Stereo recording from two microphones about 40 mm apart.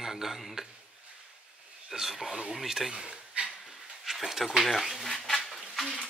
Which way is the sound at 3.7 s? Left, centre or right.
Centre.